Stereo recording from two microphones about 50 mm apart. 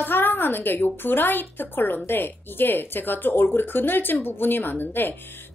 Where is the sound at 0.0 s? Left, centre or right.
Left.